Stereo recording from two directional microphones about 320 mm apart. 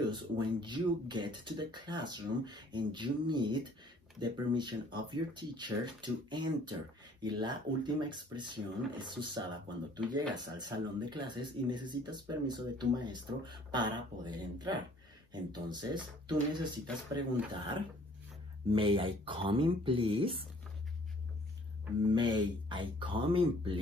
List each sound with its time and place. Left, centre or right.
0.1 s speech: centre
22.1 s speech: centre